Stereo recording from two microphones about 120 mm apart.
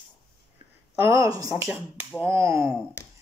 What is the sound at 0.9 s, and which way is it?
Speech, 20° right (ahead or behind).